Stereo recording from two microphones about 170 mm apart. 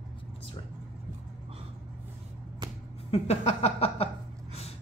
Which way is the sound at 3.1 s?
40° left (ahead or behind).